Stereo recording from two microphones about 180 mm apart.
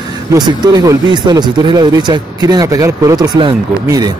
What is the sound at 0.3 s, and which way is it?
Speech, 20° right (ahead or behind).